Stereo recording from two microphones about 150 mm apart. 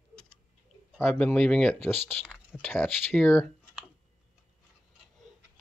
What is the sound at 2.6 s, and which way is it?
Speech, 10° left (ahead or behind).